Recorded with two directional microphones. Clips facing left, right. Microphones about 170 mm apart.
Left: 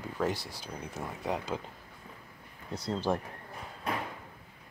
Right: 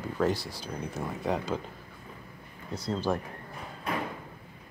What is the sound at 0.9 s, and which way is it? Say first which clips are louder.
Speech: right 3 dB; 5° left (ahead or behind).